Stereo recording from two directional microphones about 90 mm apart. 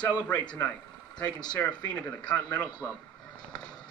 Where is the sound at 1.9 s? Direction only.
15° left (ahead or behind).